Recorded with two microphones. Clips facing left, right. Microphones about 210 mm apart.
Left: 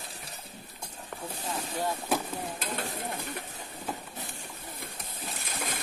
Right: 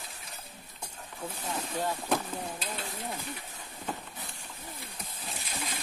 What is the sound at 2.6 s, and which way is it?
Stir, 50° left (ahead or behind).